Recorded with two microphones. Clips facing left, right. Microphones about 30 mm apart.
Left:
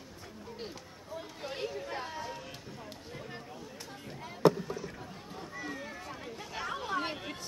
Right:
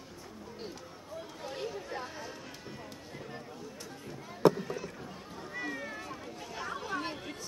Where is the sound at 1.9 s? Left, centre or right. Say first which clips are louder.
Left 2 dB; left.